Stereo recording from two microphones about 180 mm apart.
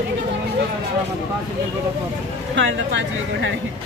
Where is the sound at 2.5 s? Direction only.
85° right.